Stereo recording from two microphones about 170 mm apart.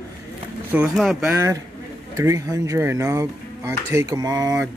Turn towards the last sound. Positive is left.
turn(degrees=-20)  # may be behind; listen again after turning